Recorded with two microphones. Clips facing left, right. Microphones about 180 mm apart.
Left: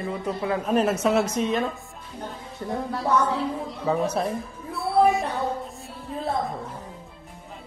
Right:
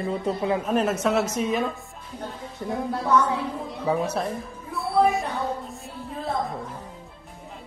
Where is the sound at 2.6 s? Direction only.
15° right (ahead or behind).